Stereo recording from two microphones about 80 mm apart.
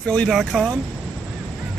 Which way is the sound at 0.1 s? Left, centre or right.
Centre.